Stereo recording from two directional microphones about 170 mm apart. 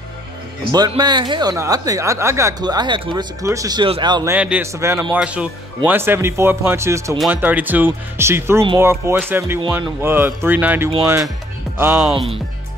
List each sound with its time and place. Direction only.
0.7 s speech: 25° right (ahead or behind)
4.3 s speech: 10° right (ahead or behind)
12.1 s speech: 35° right (ahead or behind)